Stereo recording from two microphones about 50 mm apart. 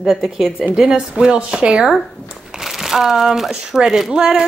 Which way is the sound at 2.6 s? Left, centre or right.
Centre.